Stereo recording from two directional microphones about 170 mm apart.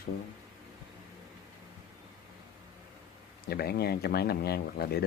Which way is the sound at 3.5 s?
65° left (ahead or behind).